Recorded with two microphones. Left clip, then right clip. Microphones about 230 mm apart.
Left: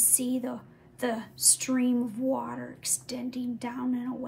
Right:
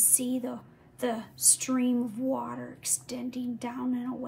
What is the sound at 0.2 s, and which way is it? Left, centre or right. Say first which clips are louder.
A woman's voice: left 1 dB; centre.